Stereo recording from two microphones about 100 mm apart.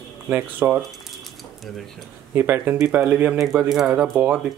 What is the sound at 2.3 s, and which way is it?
Speech, 20° right (ahead or behind).